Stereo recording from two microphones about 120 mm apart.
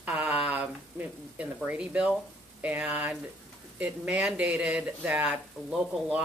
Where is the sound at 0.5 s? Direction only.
15° right (ahead or behind).